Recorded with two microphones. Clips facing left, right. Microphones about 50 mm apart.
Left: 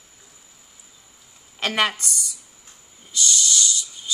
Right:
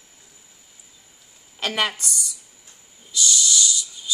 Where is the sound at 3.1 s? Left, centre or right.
Left.